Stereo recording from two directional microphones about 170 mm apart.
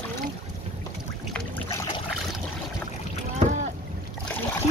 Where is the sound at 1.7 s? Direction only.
20° left (ahead or behind).